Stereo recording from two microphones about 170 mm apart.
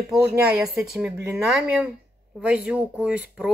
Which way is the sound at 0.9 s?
5° right (ahead or behind).